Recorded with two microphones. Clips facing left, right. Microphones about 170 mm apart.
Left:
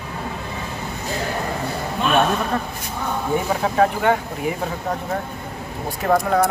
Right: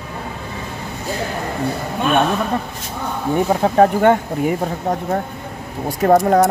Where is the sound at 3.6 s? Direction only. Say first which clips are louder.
Right 6 dB; 40° right (ahead or behind).